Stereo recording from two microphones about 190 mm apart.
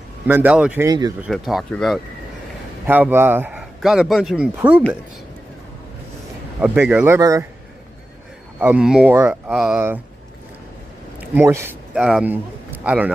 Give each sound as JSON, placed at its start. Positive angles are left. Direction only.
{"t": 0.3, "sound": "a man's voice", "side_deg": -5}
{"t": 0.8, "sound": "speech", "side_deg": -20}
{"t": 1.2, "sound": "speech", "side_deg": 0}
{"t": 2.9, "sound": "a man's voice", "side_deg": -10}
{"t": 6.6, "sound": "a man's voice", "side_deg": -5}
{"t": 8.5, "sound": "a man's voice", "side_deg": -10}
{"t": 11.1, "sound": "a man's voice", "side_deg": -10}